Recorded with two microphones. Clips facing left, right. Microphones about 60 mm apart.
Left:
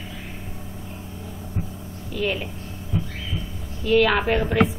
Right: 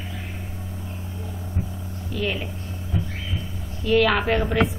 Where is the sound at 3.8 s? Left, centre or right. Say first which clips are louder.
Left 1 dB; centre.